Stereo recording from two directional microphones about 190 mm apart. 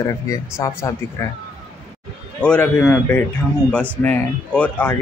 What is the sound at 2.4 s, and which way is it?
A man's voice, 5° left (ahead or behind).